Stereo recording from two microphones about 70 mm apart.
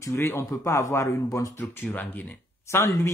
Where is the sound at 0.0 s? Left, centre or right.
Left.